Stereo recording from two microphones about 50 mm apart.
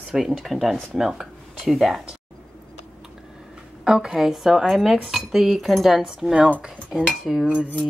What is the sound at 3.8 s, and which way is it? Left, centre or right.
A woman's voice, centre.